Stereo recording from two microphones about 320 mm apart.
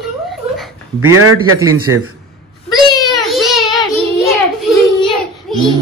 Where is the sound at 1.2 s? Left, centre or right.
Right.